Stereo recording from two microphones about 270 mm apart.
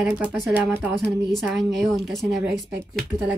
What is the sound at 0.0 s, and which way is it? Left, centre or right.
Speech, centre.